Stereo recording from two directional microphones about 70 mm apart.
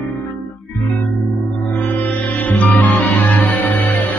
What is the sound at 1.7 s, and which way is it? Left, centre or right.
Music, left.